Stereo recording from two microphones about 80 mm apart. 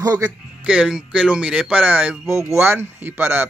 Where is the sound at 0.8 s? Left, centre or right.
Centre.